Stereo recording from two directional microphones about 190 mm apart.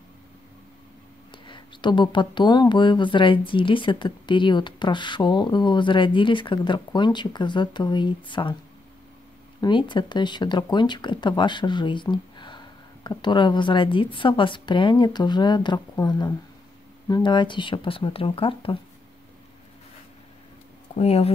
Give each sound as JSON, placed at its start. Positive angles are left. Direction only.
{"t": 1.5, "sound": "speech", "side_deg": 25}
{"t": 9.6, "sound": "speech", "side_deg": 25}
{"t": 20.9, "sound": "speech", "side_deg": 35}